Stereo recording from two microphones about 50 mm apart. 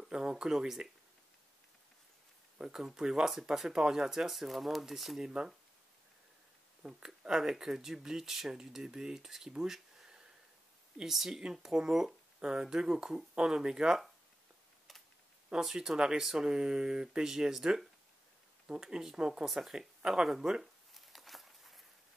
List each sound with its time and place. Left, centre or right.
0.0 s speech: centre
2.7 s speech: centre
6.8 s speech: centre
9.5 s a sound: centre
11.0 s speech: centre
15.6 s speech: centre
19.4 s speech: centre
20.9 s a sound: centre